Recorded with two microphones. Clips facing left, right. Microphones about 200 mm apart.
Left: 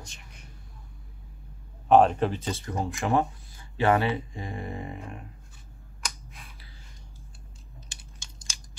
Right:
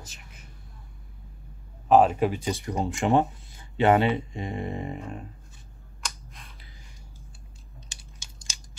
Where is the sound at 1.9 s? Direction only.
5° right (ahead or behind); by 5.2 s 25° right (ahead or behind).